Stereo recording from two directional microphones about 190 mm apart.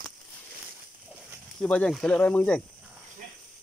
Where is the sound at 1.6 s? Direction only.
5° left (ahead or behind).